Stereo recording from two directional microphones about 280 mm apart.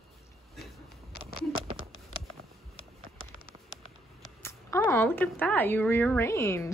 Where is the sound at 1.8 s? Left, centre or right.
Left.